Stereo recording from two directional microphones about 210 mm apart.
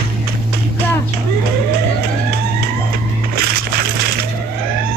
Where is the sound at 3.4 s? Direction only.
45° right (ahead or behind).